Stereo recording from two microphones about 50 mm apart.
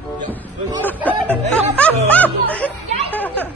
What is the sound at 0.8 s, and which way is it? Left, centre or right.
Speech, left.